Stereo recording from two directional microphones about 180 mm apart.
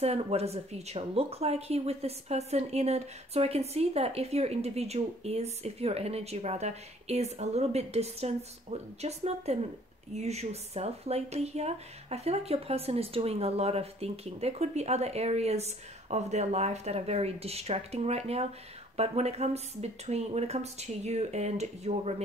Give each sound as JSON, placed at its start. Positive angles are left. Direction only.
{"t": 0.0, "sound": "speech", "side_deg": -35}